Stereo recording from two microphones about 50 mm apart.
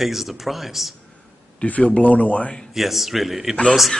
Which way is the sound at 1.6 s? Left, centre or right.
Left.